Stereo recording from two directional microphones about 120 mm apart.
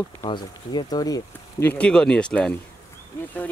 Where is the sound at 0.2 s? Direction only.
40° left (ahead or behind).